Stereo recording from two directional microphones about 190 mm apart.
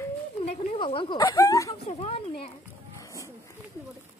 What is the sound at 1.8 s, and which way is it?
Speech, 30° left (ahead or behind).